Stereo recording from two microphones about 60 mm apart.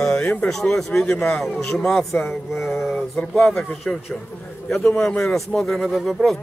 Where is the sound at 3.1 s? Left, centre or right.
Centre.